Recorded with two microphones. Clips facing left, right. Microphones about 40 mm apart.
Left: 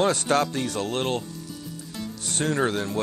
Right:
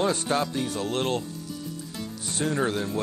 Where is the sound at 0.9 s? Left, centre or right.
Left.